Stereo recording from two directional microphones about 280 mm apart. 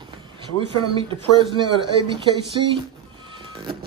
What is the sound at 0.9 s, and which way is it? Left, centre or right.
Speech, centre.